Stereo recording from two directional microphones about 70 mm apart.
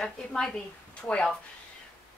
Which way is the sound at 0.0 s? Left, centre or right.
Centre.